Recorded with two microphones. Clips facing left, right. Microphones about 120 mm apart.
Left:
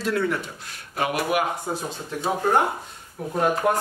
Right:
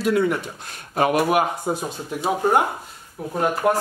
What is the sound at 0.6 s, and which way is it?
Speech, 35° right (ahead or behind).